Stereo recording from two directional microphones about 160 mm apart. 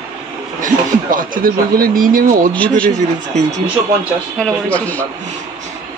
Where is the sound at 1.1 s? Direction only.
60° right (ahead or behind).